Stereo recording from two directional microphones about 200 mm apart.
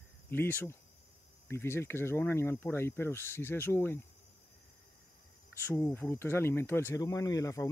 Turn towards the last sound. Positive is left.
turn(degrees=15)  # may be behind; listen again after turning